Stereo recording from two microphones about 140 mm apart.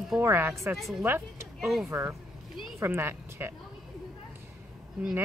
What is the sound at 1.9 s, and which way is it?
Speech, 20° right (ahead or behind).